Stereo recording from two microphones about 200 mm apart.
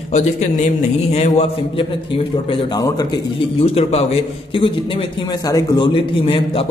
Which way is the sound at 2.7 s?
20° left (ahead or behind).